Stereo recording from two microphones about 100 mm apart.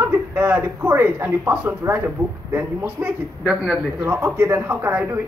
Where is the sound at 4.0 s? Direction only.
25° right (ahead or behind).